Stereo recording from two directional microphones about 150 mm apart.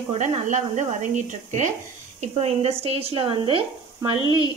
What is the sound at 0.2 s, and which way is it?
Speech, 50° right (ahead or behind).